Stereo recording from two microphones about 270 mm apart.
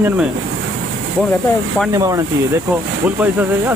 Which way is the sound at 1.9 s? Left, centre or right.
Centre.